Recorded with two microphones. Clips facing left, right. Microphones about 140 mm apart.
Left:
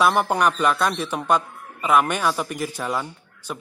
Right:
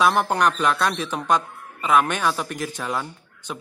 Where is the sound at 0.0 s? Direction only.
5° left (ahead or behind).